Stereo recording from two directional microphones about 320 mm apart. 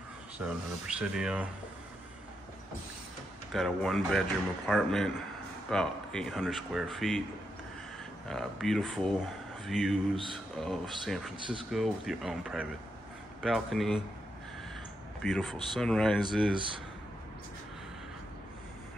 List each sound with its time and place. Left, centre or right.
0.4 s speech: centre
3.5 s speech: centre
8.3 s speech: centre
11.3 s speech: centre
11.7 s speech: centre
15.2 s speech: centre
16.5 s speech: centre